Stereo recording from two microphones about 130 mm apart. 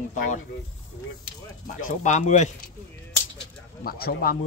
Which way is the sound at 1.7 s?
90° left.